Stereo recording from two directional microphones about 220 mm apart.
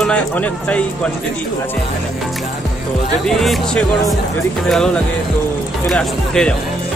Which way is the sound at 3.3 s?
Centre (ahead or behind).